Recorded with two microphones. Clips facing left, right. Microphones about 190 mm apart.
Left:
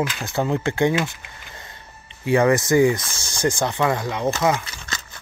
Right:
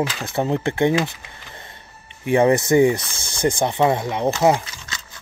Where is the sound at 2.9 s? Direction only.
55° right (ahead or behind).